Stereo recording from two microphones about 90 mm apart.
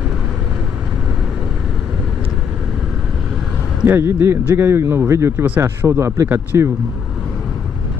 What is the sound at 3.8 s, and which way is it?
Speech, 25° right (ahead or behind).